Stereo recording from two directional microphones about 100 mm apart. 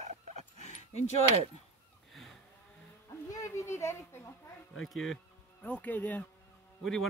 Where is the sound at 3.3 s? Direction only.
30° left (ahead or behind).